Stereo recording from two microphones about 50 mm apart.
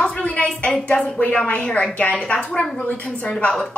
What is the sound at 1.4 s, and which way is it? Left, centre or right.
Speech, left.